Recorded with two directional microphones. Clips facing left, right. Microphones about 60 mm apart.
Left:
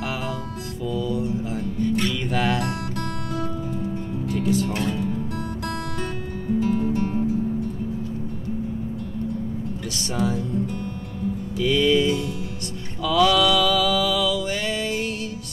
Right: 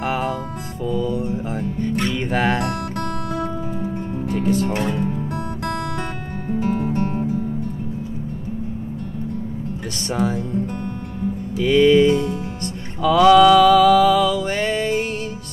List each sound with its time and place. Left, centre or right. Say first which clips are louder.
0.0 s music: right 6 dB; right
9.9 s music: right 3 dB; right
11.5 s music: right 6 dB; right
13.0 s mantra: right 7 dB; right